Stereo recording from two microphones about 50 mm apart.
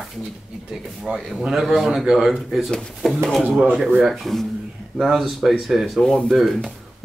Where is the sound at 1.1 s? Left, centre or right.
Right.